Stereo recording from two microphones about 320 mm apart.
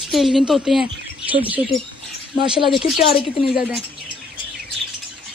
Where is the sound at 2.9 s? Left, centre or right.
Left.